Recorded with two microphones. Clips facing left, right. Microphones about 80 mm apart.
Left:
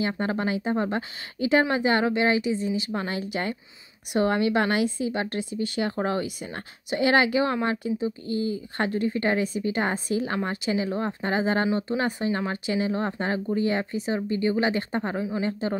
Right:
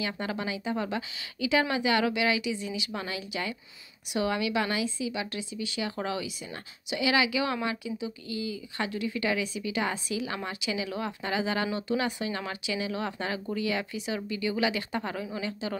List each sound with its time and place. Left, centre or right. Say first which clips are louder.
0.2 s speech: left 6 dB; left